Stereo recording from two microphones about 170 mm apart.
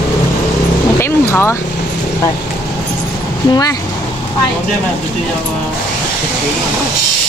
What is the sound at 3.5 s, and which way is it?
Speech, 25° left (ahead or behind).